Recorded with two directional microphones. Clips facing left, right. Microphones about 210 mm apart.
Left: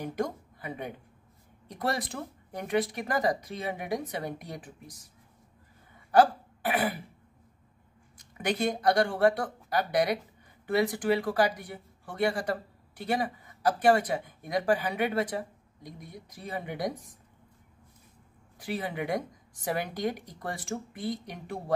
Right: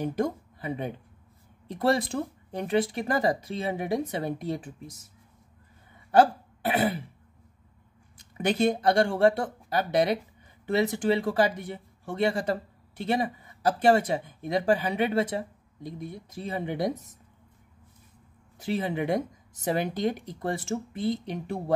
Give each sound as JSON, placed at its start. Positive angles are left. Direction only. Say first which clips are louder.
{"t": 0.0, "sound": "speech", "louder": "right 4 dB", "side_deg": -25}
{"t": 6.1, "sound": "speech", "louder": "right 1 dB", "side_deg": -25}
{"t": 8.2, "sound": "speech", "louder": "right 5 dB", "side_deg": -30}
{"t": 18.6, "sound": "speech", "louder": "right 5 dB", "side_deg": -25}